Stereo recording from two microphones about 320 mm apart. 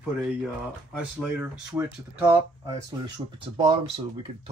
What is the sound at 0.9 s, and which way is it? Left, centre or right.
Speech, centre.